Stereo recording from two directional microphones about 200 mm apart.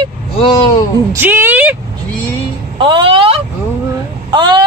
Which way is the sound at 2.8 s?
25° right (ahead or behind).